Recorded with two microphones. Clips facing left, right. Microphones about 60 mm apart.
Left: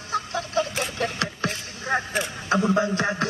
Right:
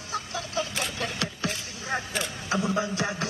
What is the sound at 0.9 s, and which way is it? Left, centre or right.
Vehicle, left.